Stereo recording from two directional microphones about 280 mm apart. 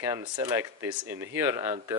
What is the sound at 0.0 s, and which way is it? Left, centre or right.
Speech, centre.